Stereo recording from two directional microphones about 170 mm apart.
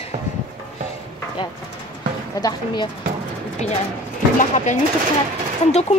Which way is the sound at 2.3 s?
25° left (ahead or behind).